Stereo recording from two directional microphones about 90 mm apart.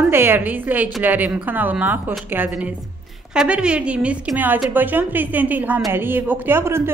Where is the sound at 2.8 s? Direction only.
Centre (ahead or behind); by 6.9 s 30° right (ahead or behind).